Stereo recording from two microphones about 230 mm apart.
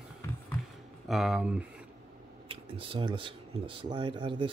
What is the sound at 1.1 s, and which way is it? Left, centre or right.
Speech, centre.